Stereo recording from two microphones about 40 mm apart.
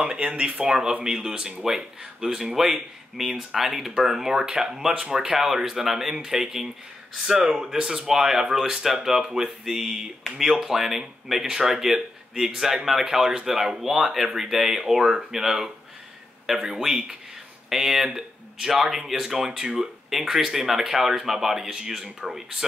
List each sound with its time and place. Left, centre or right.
0.0 s speech: right; by 15.7 s centre
16.7 s speech: centre